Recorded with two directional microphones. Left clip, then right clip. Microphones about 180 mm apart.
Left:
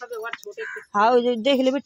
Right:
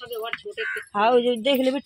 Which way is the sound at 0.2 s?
55° right (ahead or behind).